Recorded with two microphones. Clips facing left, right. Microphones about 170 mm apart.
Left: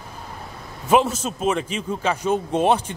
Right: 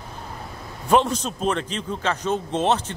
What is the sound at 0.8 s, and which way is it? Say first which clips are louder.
A man's voice: left 1 dB; 5° left (ahead or behind).